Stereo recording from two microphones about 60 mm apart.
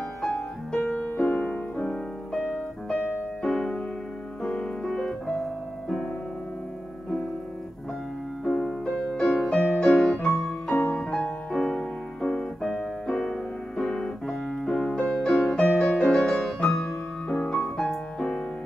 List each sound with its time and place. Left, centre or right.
0.2 s music: centre
1.1 s music: centre
3.4 s music: centre
8.5 s music: centre
10.3 s music: left
11.0 s piano: centre
17.3 s music: centre